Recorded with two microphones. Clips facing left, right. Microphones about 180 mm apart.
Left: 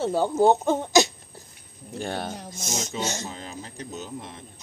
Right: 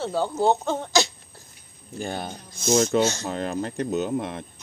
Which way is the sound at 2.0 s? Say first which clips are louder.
Even; centre (ahead or behind).